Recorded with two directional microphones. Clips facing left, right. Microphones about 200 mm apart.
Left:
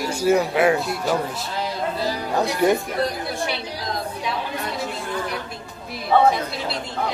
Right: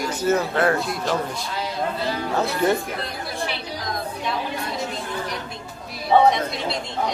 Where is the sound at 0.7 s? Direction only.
5° left (ahead or behind).